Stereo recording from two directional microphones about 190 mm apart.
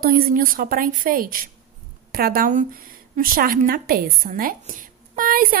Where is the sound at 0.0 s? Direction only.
50° right (ahead or behind).